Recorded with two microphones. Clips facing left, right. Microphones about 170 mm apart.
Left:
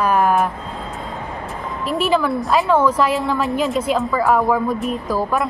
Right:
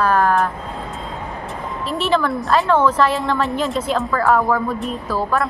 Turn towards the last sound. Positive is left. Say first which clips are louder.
# left 1 dB
turn(degrees=15)  # may be behind; listen again after turning